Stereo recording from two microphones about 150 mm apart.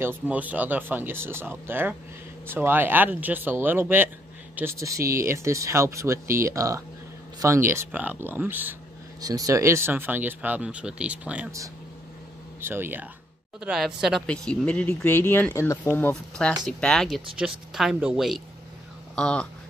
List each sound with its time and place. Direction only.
0.0 s speech: 10° right (ahead or behind)
9.2 s speech: 25° right (ahead or behind); by 11.5 s 10° right (ahead or behind)
12.5 s speech: 15° right (ahead or behind)
13.6 s speech: 5° right (ahead or behind)
19.1 s a sound: 5° left (ahead or behind)